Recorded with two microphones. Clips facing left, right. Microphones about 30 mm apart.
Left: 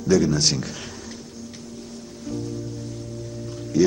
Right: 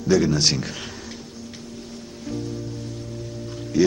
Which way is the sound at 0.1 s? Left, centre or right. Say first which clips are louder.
Even; right.